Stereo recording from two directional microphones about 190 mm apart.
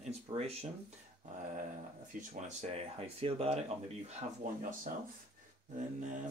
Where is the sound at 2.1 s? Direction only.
45° right (ahead or behind).